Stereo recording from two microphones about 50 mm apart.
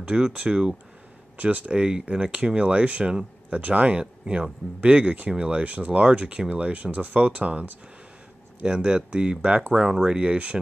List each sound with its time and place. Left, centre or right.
0.0 s speech: centre
1.4 s speech: right